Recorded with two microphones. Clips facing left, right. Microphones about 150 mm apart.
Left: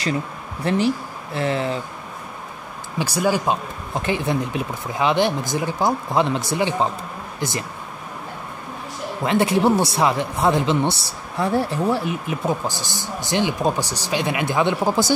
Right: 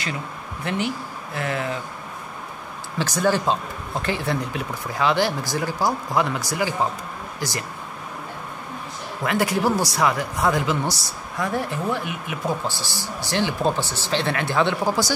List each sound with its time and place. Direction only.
0.7 s speech: 35° left (ahead or behind)
3.0 s speech: 10° left (ahead or behind)
9.2 s speech: 25° left (ahead or behind)
12.4 s speech: 20° left (ahead or behind)